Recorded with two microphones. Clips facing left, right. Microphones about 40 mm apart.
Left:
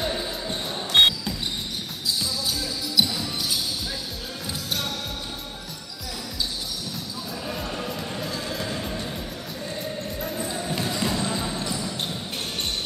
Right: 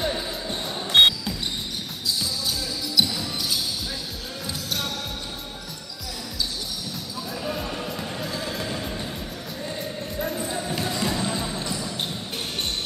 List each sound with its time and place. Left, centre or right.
0.0 s basketball bounce: centre
3.0 s music: centre
4.5 s basketball bounce: centre
7.4 s music: centre
9.8 s basketball bounce: centre